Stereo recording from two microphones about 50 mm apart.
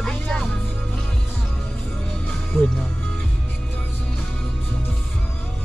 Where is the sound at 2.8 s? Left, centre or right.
Left.